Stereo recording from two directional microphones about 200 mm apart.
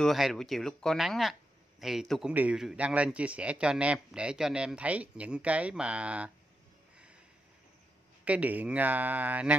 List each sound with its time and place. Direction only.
0.0 s a man's voice: centre (ahead or behind)
8.3 s speech: 10° right (ahead or behind)